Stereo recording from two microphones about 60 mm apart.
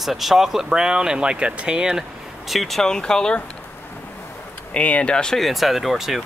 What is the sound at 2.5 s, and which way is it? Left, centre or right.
Speech, centre.